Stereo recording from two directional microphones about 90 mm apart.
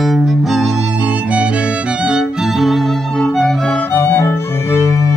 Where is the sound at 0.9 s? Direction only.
15° right (ahead or behind); by 3.8 s 5° left (ahead or behind).